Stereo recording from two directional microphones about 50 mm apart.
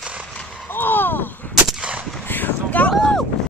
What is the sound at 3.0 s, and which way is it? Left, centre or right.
Vehicle, centre.